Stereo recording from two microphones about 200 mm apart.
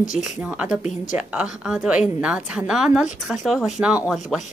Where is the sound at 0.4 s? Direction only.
5° right (ahead or behind).